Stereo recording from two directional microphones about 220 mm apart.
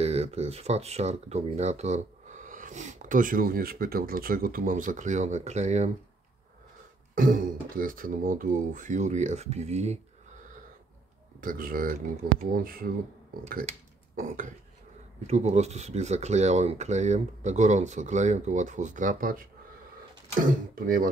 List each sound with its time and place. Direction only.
0.0 s speech: 30° right (ahead or behind)
7.2 s speech: 40° right (ahead or behind)
11.4 s speech: 40° right (ahead or behind)
20.4 s speech: 40° right (ahead or behind)